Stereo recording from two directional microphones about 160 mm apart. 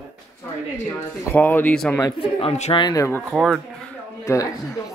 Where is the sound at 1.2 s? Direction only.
15° left (ahead or behind).